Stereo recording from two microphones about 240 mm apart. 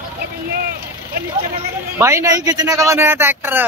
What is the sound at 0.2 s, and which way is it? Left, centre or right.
Vehicle, right.